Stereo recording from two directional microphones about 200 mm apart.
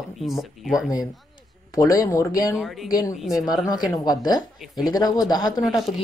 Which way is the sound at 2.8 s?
20° left (ahead or behind).